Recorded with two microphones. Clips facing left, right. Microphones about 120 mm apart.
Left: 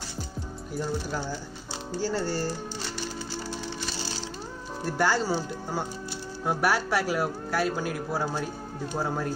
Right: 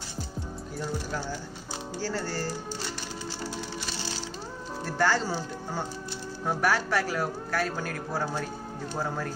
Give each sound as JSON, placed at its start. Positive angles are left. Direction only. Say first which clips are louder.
{"t": 2.0, "sound": "speech", "louder": "left 4 dB", "side_deg": 15}
{"t": 4.8, "sound": "speech", "louder": "left 1 dB", "side_deg": 10}